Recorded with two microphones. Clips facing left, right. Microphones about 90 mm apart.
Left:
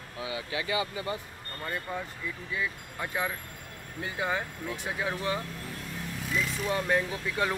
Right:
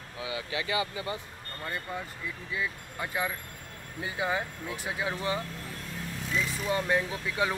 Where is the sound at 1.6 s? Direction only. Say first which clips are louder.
Left 1 dB; centre (ahead or behind).